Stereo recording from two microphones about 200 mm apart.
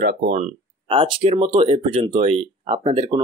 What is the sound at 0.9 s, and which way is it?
Speech, 25° right (ahead or behind).